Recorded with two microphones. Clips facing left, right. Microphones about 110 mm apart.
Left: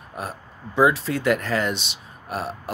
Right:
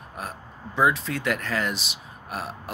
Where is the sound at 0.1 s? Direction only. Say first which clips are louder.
Left 4 dB; centre (ahead or behind).